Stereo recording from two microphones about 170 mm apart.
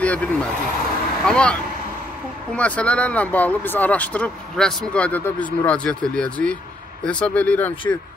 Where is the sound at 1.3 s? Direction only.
5° left (ahead or behind).